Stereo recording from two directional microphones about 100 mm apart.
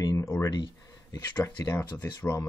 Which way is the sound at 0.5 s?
40° left (ahead or behind).